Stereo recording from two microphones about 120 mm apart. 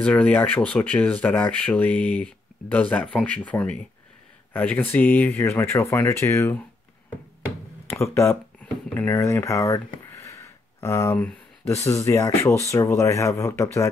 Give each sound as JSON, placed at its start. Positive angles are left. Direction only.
{"t": 0.0, "sound": "speech", "side_deg": 10}
{"t": 8.0, "sound": "speech", "side_deg": 20}